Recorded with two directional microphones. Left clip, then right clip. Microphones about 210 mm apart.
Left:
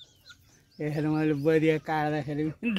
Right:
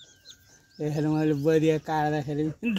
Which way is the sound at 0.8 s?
15° right (ahead or behind).